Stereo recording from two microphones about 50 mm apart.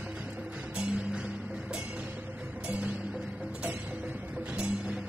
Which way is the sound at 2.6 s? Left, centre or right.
Right.